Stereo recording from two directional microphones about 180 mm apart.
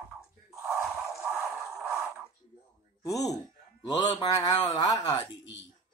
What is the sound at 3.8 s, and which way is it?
Mantra, 25° left (ahead or behind).